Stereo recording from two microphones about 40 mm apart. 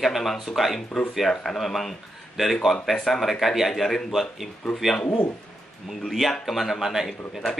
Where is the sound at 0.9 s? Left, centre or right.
Left.